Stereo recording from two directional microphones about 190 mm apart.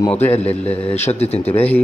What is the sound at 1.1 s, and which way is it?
Speech, 35° left (ahead or behind).